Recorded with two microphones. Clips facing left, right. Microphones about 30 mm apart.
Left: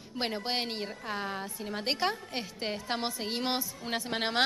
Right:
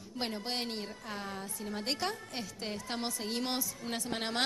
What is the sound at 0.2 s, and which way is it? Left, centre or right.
A woman's voice, left.